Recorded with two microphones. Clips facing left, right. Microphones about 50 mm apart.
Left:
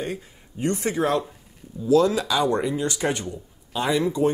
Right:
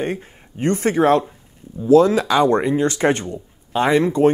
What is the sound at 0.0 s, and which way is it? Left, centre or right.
Speech, right.